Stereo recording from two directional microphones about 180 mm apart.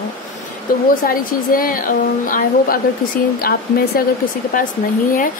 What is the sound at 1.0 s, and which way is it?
A woman's voice, 50° left (ahead or behind).